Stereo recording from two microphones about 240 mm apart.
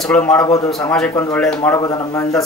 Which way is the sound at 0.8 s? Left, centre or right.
Centre.